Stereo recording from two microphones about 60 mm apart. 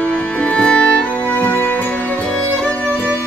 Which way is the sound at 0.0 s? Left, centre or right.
Left.